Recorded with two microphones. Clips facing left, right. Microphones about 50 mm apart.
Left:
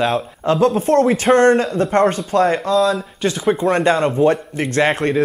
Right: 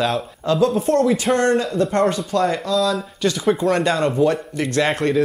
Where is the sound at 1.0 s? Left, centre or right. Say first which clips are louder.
Left 2 dB; left.